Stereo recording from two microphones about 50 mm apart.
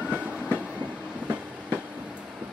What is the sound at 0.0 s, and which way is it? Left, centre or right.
Train, right.